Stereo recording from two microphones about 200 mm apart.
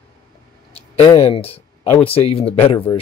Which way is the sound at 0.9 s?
30° left (ahead or behind).